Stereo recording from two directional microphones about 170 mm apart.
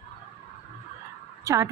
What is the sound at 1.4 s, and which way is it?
Speech, 20° right (ahead or behind).